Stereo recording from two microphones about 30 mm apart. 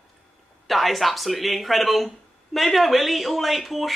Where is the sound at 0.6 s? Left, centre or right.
Centre.